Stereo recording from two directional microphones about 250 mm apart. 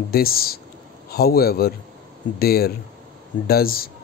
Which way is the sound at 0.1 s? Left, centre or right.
Left.